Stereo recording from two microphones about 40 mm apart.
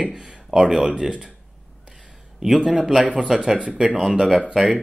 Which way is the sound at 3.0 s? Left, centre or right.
Right.